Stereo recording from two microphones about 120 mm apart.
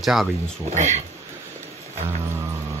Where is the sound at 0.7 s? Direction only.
75° right (ahead or behind).